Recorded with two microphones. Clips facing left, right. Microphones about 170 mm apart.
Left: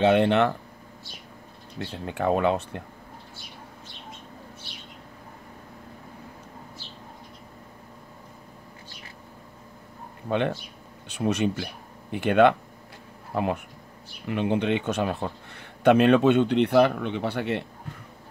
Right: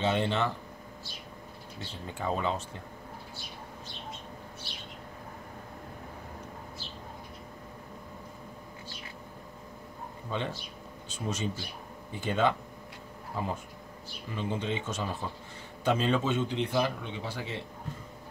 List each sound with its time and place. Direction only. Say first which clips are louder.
0.0 s speech: left 9 dB; 65° left (ahead or behind)
1.8 s speech: left 9 dB; 65° left (ahead or behind)
10.2 s speech: left 9 dB; 65° left (ahead or behind)